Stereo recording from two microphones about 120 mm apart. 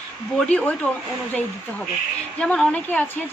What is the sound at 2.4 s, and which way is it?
Speech, 5° left (ahead or behind).